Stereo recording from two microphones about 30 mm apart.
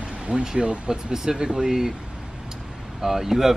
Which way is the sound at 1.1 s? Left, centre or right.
Centre.